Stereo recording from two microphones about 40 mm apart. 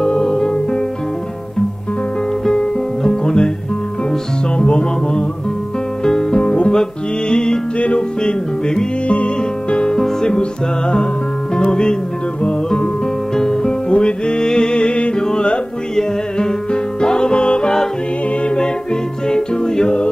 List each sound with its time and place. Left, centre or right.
0.0 s music: centre
2.4 s music: centre
4.6 s music: left
6.3 s guitar: left
6.7 s music: centre
11.5 s speech: left
13.4 s music: centre
19.2 s music: centre